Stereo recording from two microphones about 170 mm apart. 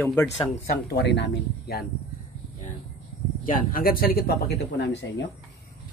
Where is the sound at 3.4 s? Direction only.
55° left (ahead or behind); by 4.9 s 75° left (ahead or behind).